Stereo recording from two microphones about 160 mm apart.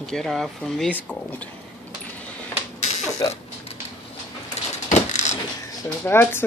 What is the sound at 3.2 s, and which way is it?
Speech, 25° left (ahead or behind).